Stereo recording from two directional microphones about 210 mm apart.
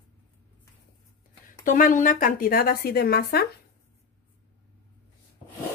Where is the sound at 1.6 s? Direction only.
40° left (ahead or behind).